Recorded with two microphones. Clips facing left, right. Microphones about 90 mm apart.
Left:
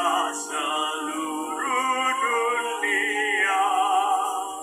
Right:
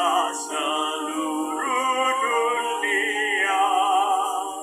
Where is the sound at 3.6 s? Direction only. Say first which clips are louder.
Right 2 dB; 5° left (ahead or behind).